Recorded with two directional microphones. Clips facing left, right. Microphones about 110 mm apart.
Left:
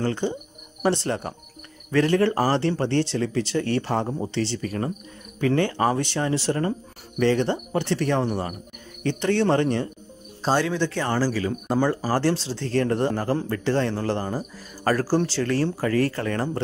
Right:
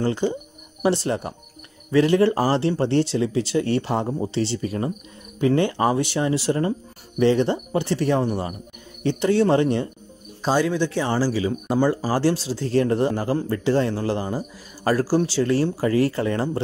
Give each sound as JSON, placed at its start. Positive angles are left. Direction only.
{"t": 0.0, "sound": "speech", "side_deg": -10}